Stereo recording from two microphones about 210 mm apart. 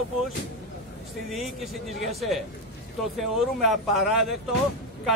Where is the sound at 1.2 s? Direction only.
Centre (ahead or behind).